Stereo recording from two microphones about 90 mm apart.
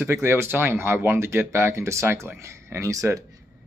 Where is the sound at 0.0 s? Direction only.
30° right (ahead or behind).